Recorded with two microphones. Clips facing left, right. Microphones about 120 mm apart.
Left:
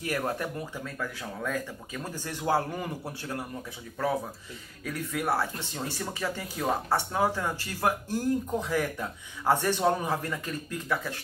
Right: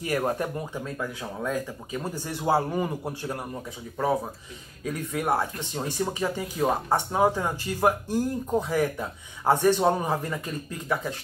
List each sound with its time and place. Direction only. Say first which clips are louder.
0.0 s speech: right 4 dB; 15° right (ahead or behind)
5.2 s speech: right 3 dB; 20° right (ahead or behind)